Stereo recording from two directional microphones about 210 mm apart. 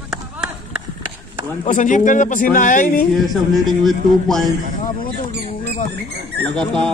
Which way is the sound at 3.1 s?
Centre (ahead or behind).